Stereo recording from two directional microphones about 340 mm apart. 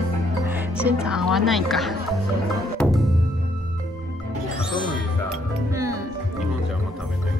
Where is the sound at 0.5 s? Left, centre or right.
Centre.